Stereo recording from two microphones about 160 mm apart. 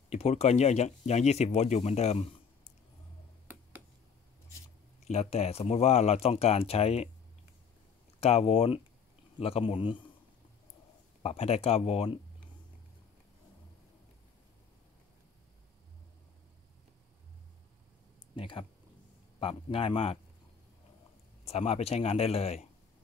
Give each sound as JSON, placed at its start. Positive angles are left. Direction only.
{"t": 0.1, "sound": "speech", "side_deg": 40}
{"t": 5.0, "sound": "speech", "side_deg": 45}
{"t": 8.2, "sound": "speech", "side_deg": 40}
{"t": 11.2, "sound": "speech", "side_deg": 40}
{"t": 18.3, "sound": "speech", "side_deg": 35}
{"t": 21.5, "sound": "speech", "side_deg": 40}